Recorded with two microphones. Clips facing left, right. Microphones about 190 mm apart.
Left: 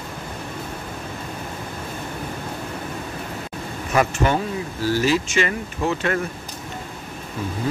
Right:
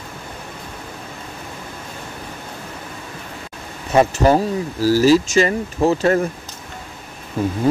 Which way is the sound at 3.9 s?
35° right (ahead or behind).